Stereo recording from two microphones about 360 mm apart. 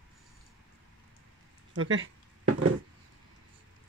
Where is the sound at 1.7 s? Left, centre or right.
Right.